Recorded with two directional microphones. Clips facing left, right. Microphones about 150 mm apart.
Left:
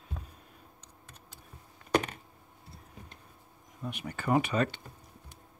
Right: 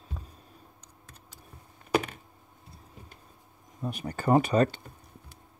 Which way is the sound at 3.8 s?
40° right (ahead or behind).